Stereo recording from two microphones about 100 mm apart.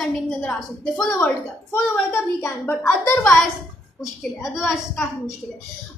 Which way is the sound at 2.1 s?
25° left (ahead or behind).